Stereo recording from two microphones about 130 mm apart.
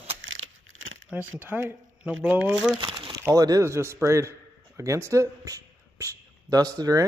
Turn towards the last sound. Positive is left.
turn(degrees=-30)  # may be behind; listen again after turning